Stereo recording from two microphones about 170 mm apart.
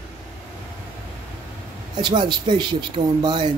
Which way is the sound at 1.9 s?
25° right (ahead or behind).